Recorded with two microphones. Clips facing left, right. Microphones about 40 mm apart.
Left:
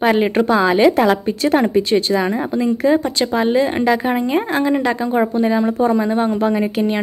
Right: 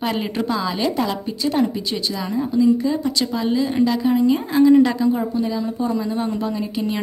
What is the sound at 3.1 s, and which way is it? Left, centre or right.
A woman's voice, left.